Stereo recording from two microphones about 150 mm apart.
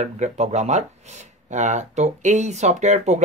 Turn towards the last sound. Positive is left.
turn(degrees=-50)  # may be behind; listen again after turning